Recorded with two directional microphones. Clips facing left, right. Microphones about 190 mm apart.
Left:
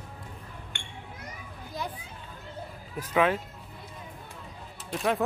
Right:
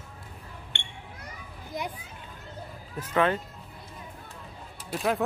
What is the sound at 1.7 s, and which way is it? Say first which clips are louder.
Children playing: right 2 dB; 20° right (ahead or behind).